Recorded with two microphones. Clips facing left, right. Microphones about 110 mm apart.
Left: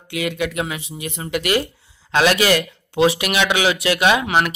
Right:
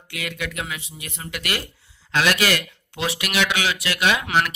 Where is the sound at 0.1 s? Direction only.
25° left (ahead or behind).